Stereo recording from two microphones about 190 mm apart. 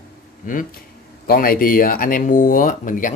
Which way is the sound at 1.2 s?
50° left (ahead or behind).